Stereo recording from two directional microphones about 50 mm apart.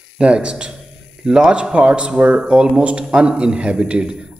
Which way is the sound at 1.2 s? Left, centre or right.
Centre.